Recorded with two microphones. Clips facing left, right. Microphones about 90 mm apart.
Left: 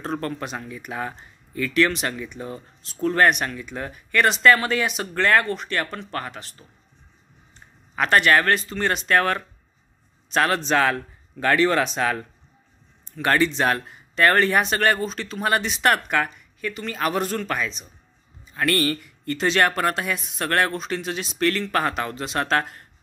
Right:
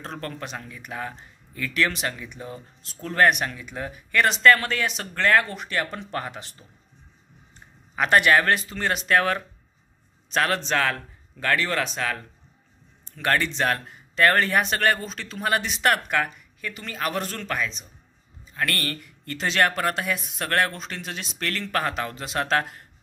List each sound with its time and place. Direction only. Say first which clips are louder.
0.0 s speech: left 6 dB; 5° left (ahead or behind); by 6.5 s 15° right (ahead or behind)
7.9 s speech: left 1 dB; 10° right (ahead or behind); by 11.0 s 10° left (ahead or behind)
11.3 s speech: left 5 dB; 25° left (ahead or behind)
13.1 s speech: left 4 dB; 5° left (ahead or behind)